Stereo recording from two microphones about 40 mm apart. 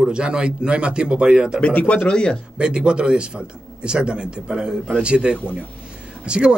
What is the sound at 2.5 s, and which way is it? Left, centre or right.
Speech, right.